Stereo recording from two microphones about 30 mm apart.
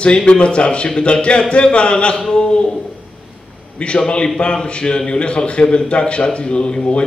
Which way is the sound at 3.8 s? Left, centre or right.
Left.